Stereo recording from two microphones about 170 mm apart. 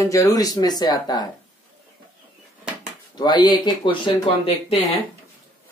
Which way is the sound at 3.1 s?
25° left (ahead or behind).